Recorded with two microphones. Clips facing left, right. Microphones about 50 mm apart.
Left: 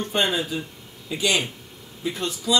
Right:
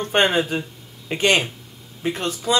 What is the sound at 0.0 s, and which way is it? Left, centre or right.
Speech, right.